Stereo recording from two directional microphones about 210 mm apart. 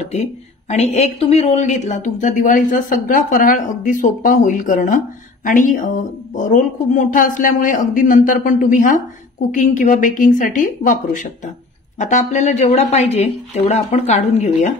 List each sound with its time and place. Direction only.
0.1 s speech: 30° left (ahead or behind)